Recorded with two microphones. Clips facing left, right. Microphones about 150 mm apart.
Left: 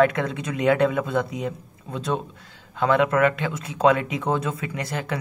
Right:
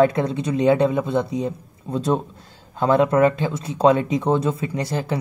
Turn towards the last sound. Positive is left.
turn(degrees=-30)  # may be behind; listen again after turning